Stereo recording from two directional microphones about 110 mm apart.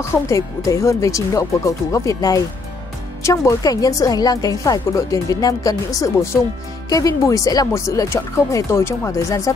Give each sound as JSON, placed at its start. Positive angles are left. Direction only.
{"t": 0.3, "sound": "a woman's voice", "side_deg": 30}